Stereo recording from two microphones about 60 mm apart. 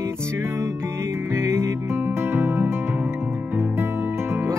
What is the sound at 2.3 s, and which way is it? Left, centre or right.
Music, right.